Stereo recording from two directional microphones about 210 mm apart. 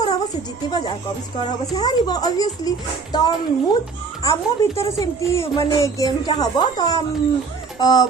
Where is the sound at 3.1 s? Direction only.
20° left (ahead or behind).